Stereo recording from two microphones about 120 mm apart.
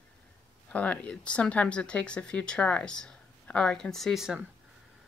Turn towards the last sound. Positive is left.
turn(degrees=-5)  # may be behind; listen again after turning